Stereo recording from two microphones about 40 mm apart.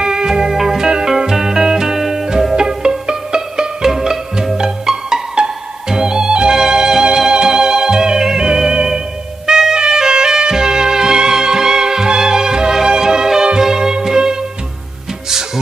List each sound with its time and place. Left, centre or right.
0.0 s music: centre